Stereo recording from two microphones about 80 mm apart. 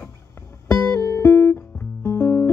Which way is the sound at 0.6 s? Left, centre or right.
Left.